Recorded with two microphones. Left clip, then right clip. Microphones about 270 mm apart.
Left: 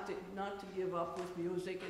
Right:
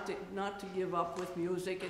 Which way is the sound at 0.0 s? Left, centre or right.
Right.